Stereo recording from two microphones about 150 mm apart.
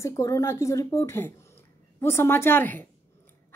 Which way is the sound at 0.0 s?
20° left (ahead or behind).